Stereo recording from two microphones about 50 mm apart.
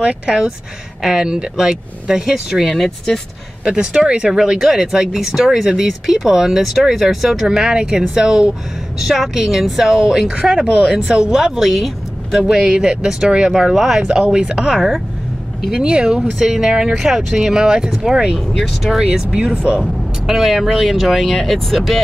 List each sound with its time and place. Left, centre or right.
0.0 s speech: centre
3.6 s speech: centre
12.4 s speech: centre
13.5 s speech: centre
18.5 s speech: centre
19.8 s speech: centre